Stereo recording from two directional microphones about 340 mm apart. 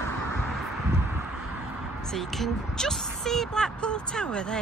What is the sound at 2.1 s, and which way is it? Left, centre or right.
Speech, centre.